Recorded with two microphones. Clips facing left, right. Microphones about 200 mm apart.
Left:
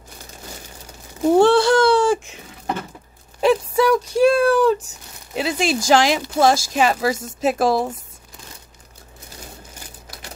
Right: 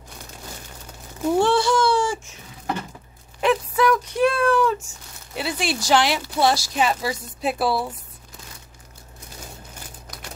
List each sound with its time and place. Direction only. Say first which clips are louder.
1.4 s baby cry: left 5 dB; 65° left (ahead or behind)
3.3 s a sound: left 4 dB; 35° left (ahead or behind)
5.4 s speech: left 5 dB; 90° left
6.4 s speech: left 4 dB; 45° left (ahead or behind)